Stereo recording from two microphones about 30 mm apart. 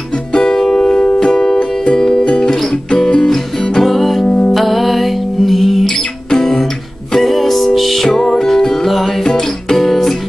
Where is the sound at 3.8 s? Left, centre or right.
Centre.